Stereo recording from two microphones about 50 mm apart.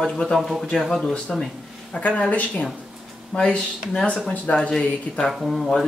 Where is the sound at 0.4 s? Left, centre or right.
Centre.